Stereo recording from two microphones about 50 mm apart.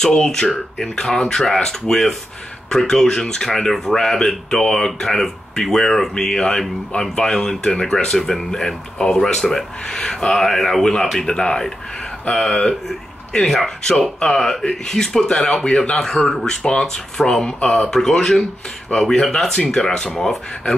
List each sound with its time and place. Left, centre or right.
0.0 s speech: centre
10.3 s speech: centre
16.4 s speech: centre
16.8 s speech: centre